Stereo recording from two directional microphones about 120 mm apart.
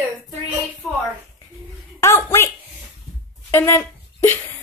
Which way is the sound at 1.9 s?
25° left (ahead or behind).